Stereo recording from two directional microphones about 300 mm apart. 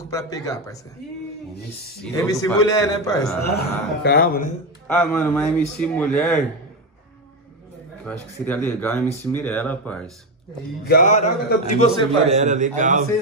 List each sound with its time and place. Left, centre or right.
0.0 s a man's voice: centre
2.3 s a man's voice: centre
3.5 s a man's voice: left
4.8 s speech: centre
8.0 s speech: centre
10.9 s a man's voice: left
12.3 s a man's voice: right